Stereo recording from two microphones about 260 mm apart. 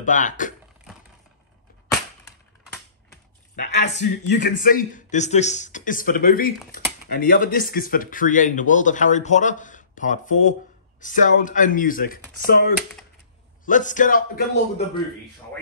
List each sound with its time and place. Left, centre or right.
0.0 s speech: left
2.6 s typing: centre
3.5 s a man's voice: left